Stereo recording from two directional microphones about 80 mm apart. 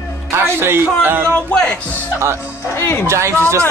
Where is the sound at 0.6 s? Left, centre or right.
Right.